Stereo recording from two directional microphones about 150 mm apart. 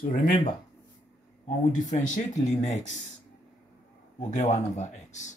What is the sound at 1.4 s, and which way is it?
Speech, 55° left (ahead or behind).